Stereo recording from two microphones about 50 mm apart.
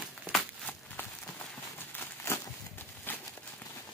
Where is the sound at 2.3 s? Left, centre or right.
Left.